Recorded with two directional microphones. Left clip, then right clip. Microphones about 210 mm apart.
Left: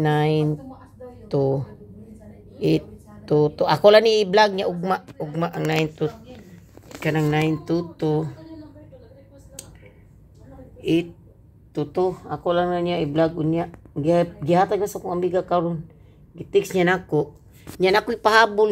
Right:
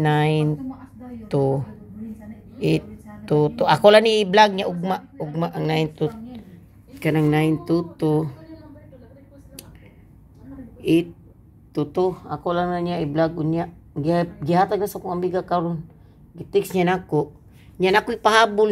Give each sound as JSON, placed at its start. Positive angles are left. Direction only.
{"t": 0.0, "sound": "speech", "side_deg": 0}
{"t": 3.3, "sound": "speech", "side_deg": 0}
{"t": 10.8, "sound": "a woman's voice", "side_deg": -15}